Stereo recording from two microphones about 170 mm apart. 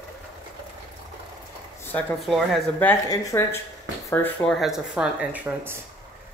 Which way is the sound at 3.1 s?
15° left (ahead or behind).